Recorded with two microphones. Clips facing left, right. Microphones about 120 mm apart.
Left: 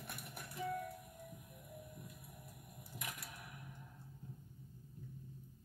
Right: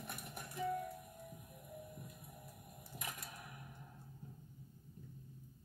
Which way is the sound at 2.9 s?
40° right (ahead or behind).